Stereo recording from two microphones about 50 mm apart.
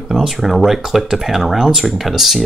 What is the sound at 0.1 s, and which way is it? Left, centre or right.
Speech, centre.